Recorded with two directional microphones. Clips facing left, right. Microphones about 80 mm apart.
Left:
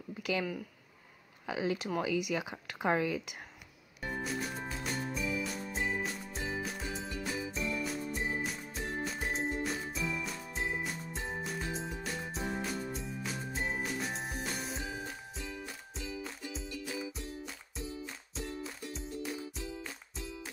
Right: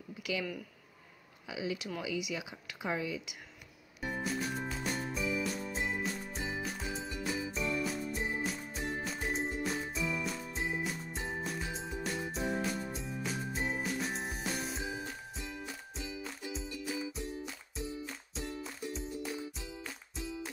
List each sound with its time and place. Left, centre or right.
0.2 s a sound: left
1.5 s speech: left
4.0 s music: centre
17.7 s music: centre